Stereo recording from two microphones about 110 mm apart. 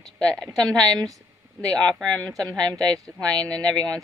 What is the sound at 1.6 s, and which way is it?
Speech, 35° right (ahead or behind).